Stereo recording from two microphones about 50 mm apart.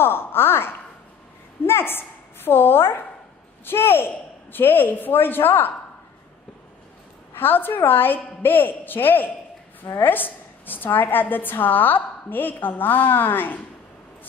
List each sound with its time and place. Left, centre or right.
0.0 s a man's voice: left
7.3 s a man's voice: left